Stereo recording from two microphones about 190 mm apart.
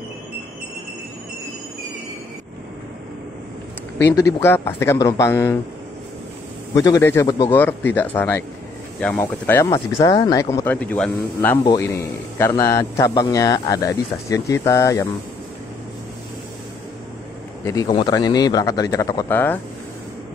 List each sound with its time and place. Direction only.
4.0 s a man's voice: 15° left (ahead or behind)
6.7 s a man's voice: 15° left (ahead or behind)
17.6 s speech: 20° left (ahead or behind)